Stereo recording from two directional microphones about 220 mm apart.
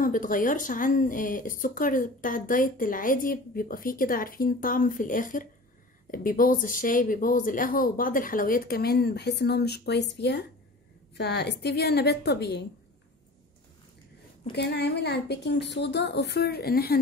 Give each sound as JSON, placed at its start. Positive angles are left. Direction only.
{"t": 0.0, "sound": "a woman's voice", "side_deg": 40}
{"t": 14.5, "sound": "a woman's voice", "side_deg": 50}